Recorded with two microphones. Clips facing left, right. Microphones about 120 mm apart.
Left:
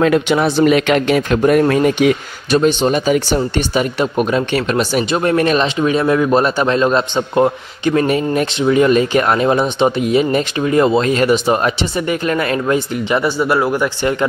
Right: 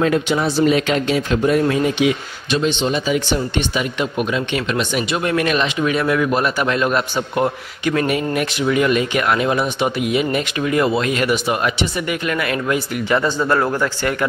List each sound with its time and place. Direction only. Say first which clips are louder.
0.0 s speech: left 4 dB; 70° left (ahead or behind); by 12.8 s 30° left (ahead or behind)
13.1 s speech: left 2 dB; 10° left (ahead or behind)